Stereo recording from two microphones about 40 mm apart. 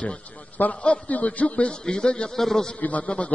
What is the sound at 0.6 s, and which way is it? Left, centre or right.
A man's voice, left.